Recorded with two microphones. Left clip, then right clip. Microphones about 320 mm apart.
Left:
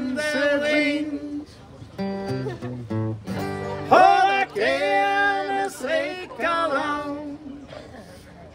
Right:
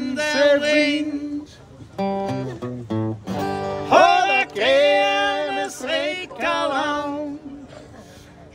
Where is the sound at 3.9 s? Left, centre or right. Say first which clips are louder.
Right 1 dB; centre.